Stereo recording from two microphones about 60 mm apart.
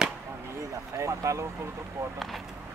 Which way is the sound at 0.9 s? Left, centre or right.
Right.